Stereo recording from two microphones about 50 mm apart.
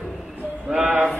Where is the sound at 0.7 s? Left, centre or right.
Right.